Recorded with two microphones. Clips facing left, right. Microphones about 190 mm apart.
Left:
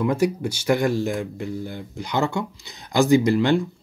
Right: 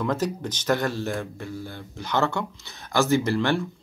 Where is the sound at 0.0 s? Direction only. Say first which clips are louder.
Left 5 dB; 10° left (ahead or behind).